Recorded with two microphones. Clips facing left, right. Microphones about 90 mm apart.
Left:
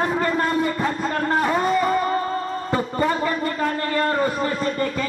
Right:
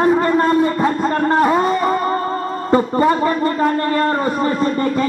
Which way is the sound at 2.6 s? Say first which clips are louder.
Right 12 dB; 35° right (ahead or behind).